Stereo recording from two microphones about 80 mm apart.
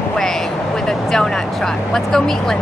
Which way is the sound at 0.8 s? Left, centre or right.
Centre.